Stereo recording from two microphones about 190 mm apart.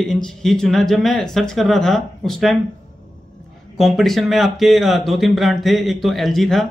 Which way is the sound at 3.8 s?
Centre (ahead or behind).